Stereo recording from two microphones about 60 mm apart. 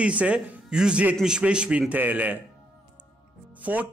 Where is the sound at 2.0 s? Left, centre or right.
Right.